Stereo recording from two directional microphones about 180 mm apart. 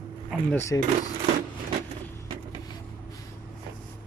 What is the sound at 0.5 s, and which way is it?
Speech, 15° left (ahead or behind).